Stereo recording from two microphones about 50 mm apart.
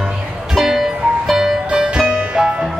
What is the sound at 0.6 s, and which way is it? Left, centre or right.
Music, centre.